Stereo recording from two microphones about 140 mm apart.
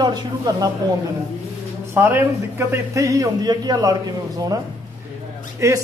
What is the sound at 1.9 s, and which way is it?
A man's voice, 15° right (ahead or behind).